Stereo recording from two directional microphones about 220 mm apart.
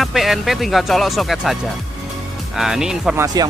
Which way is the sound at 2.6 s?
Centre (ahead or behind).